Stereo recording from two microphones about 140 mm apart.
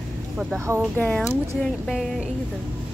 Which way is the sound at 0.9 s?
10° left (ahead or behind).